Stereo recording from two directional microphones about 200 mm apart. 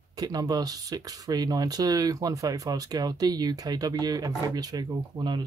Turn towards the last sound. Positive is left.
turn(degrees=-20)  # may be behind; listen again after turning